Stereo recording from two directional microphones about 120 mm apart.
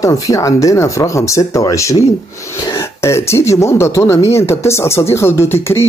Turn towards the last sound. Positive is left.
turn(degrees=20)  # may be behind; listen again after turning